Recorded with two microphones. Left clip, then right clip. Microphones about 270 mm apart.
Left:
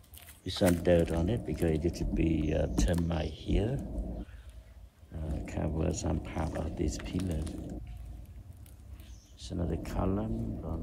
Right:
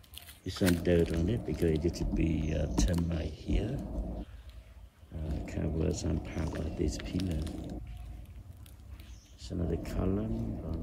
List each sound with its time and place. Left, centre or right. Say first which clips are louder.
0.5 s speech: left 3 dB; centre
3.8 s a sound: right 1 dB; left
5.3 s speech: left 1 dB; centre
9.5 s speech: right 1 dB; centre